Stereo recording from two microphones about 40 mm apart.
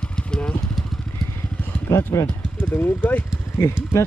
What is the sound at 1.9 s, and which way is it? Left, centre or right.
Speech, left.